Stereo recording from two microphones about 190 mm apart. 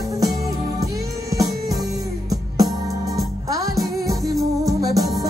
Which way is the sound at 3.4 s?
20° right (ahead or behind).